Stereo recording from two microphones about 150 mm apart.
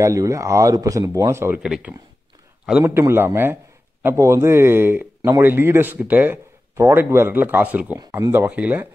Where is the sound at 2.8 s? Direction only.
15° right (ahead or behind).